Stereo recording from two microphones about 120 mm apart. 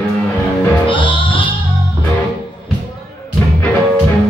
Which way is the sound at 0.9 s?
45° left (ahead or behind).